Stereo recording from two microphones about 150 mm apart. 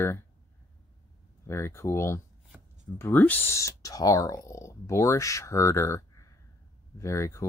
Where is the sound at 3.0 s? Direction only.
10° left (ahead or behind).